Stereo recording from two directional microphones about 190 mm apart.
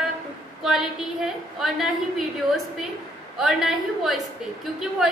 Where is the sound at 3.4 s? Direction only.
Centre (ahead or behind).